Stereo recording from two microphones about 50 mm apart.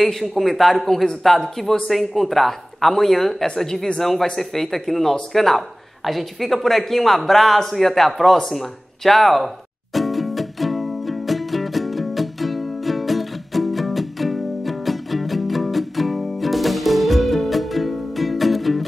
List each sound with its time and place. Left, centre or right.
0.0 s a man's voice: centre
9.9 s music: centre